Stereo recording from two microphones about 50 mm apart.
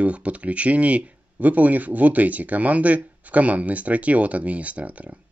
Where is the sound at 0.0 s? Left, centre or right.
Right.